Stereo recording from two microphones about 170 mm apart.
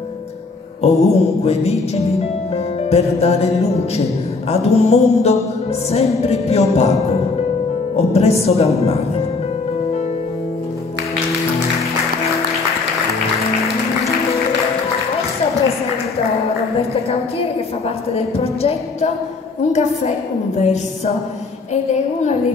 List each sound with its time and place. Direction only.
1.0 s music: 40° left (ahead or behind)
7.9 s music: 40° left (ahead or behind)
17.1 s a woman's voice: 35° left (ahead or behind)